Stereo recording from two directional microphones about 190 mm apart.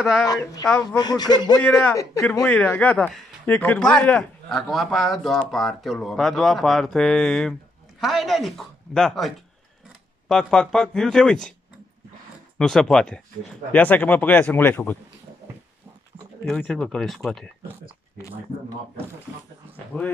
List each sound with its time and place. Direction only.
0.2 s speech: 20° left (ahead or behind)
1.6 s speech: 10° left (ahead or behind)
12.5 s speech: 5° left (ahead or behind)
16.4 s speech: 5° left (ahead or behind)
19.9 s speech: 5° left (ahead or behind)